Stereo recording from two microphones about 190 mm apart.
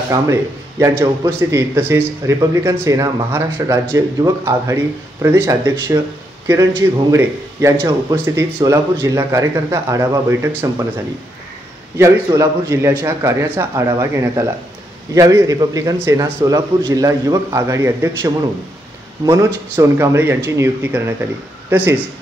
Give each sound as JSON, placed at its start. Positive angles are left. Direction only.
{"t": 0.1, "sound": "speech", "side_deg": -15}
{"t": 12.0, "sound": "speech", "side_deg": -15}